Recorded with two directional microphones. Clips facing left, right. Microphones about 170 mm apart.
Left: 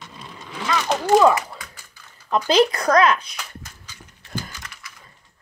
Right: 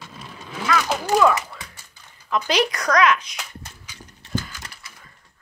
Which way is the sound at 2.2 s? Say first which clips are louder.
Left 4 dB; 35° left (ahead or behind).